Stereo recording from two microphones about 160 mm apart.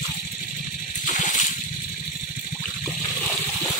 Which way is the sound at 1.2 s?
55° left (ahead or behind).